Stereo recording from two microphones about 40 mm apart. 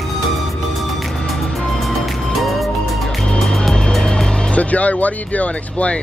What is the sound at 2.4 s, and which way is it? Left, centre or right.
Music, centre.